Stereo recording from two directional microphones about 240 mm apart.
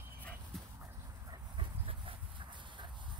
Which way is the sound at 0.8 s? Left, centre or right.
Centre.